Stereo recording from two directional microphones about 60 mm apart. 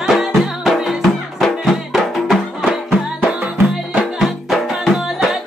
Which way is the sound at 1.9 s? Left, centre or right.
Centre.